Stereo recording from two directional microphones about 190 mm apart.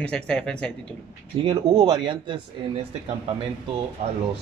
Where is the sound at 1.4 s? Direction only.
25° right (ahead or behind).